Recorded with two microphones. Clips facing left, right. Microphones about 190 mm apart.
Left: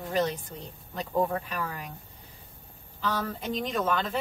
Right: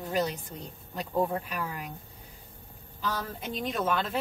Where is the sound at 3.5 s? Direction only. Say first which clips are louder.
Left 1 dB; 5° right (ahead or behind).